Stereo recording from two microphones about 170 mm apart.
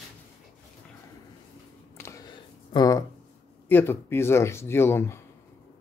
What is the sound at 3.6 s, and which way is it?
Speech, 10° left (ahead or behind).